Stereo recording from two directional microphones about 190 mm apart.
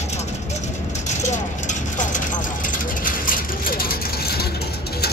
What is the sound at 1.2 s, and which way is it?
Vehicle, 40° left (ahead or behind).